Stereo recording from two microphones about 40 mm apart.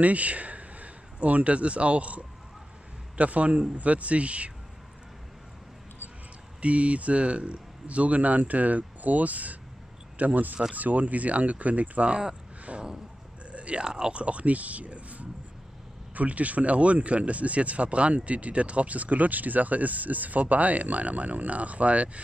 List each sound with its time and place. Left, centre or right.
0.0 s speech: right
6.6 s speech: right
12.7 s a sound: right
13.5 s biting: right
13.8 s speech: centre
14.1 s speech: right